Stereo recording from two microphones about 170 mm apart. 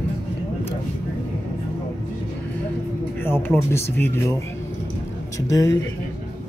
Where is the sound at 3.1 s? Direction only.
15° left (ahead or behind).